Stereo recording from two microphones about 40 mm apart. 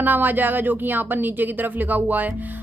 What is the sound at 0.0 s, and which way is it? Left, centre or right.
Speech, right.